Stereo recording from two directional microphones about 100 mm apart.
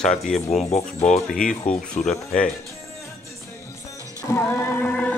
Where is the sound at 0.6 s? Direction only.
90° left.